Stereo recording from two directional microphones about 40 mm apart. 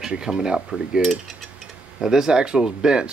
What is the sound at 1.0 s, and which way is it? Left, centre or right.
Mechanisms, centre.